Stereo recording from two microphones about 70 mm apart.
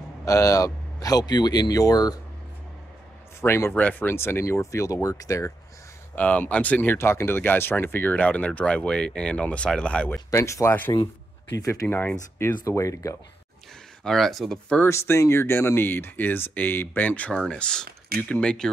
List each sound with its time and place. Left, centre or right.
0.2 s speech: left
3.3 s speech: left
3.7 s speech: left
6.1 s speech: left
10.3 s speech: left
14.0 s speech: centre
14.9 s speech: left; by 18.7 s centre